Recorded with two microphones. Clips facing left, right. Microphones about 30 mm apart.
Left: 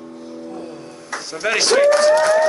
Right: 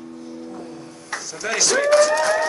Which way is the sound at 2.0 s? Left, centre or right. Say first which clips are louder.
Left 3 dB; left.